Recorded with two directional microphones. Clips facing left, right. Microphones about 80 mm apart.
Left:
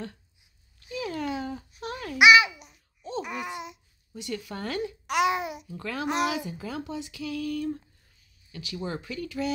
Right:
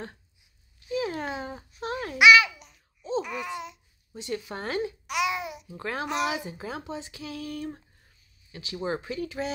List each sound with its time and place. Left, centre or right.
0.8 s a sound: right
2.1 s babbling: centre
4.1 s speech: right
5.0 s babbling: left
5.7 s speech: right